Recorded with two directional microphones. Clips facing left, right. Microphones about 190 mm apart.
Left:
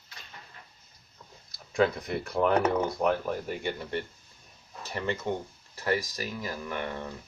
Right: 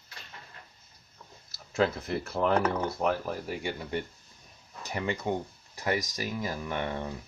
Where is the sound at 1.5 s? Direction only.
5° right (ahead or behind); by 7.1 s 20° right (ahead or behind).